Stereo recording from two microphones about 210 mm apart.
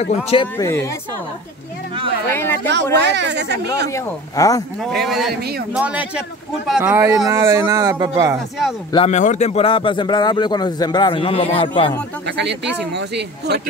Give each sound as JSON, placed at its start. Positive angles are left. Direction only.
{"t": 0.0, "sound": "speech", "side_deg": 30}
{"t": 0.6, "sound": "speech", "side_deg": 15}
{"t": 2.2, "sound": "speech", "side_deg": 10}
{"t": 2.7, "sound": "speech", "side_deg": -55}
{"t": 3.9, "sound": "speech", "side_deg": 15}
{"t": 4.7, "sound": "a man's voice", "side_deg": 0}
{"t": 5.3, "sound": "speech", "side_deg": -50}
{"t": 5.7, "sound": "a man's voice", "side_deg": -5}
{"t": 8.9, "sound": "speech", "side_deg": 30}
{"t": 12.3, "sound": "speech", "side_deg": -55}